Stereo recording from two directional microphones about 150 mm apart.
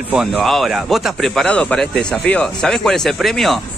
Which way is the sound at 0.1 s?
5° right (ahead or behind).